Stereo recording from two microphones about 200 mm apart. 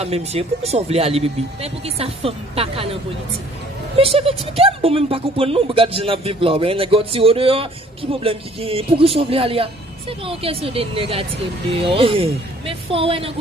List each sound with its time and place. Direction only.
0.0 s speech: 30° right (ahead or behind)